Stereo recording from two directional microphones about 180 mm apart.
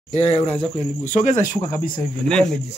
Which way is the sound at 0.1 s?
35° left (ahead or behind).